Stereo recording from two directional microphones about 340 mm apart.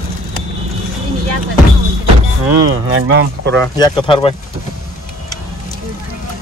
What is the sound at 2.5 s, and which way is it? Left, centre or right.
Speech, right.